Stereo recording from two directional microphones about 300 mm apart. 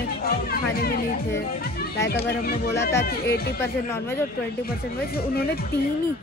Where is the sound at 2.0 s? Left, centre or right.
Left.